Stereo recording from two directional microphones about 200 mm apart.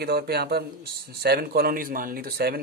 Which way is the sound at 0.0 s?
55° right (ahead or behind).